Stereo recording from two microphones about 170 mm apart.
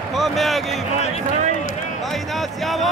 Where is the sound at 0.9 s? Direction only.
40° left (ahead or behind).